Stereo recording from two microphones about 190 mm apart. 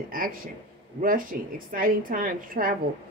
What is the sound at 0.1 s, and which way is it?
A woman's voice, 50° right (ahead or behind).